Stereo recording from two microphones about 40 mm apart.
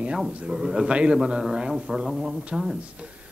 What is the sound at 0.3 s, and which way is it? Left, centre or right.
Speech, right.